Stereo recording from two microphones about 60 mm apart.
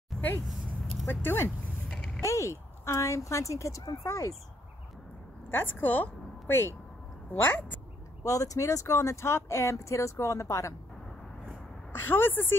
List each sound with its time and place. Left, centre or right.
1.0 s a woman's voice: left
1.9 s a sound: centre
2.2 s speech: left
5.5 s a woman's voice: left
7.2 s speech: left
8.2 s speech: left
11.9 s a woman's voice: left